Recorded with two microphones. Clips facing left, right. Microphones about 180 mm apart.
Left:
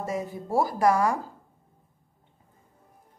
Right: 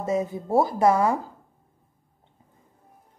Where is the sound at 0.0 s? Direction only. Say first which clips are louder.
Right 5 dB; 20° right (ahead or behind).